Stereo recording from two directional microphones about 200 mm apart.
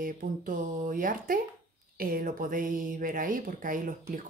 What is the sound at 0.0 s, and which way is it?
Speech, 45° right (ahead or behind).